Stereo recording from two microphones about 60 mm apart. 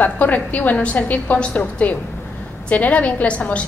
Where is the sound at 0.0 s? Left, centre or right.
Left.